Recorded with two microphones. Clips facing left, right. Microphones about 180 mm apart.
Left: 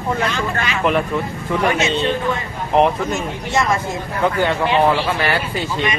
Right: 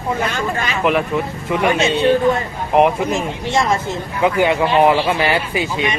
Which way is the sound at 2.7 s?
10° right (ahead or behind).